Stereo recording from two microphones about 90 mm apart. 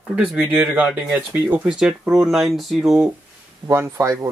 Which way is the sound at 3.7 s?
30° right (ahead or behind).